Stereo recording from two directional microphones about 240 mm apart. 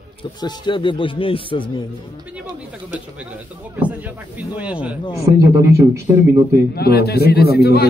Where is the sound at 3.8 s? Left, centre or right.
Centre.